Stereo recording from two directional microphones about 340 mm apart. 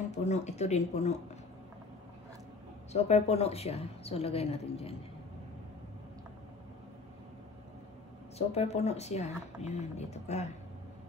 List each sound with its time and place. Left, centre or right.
0.1 s speech: centre
2.9 s a woman's voice: centre
8.4 s speech: centre